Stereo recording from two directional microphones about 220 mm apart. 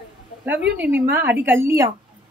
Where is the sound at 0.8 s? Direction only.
10° right (ahead or behind).